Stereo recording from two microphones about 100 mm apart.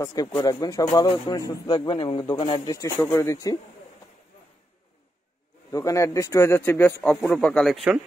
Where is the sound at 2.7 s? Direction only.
30° left (ahead or behind).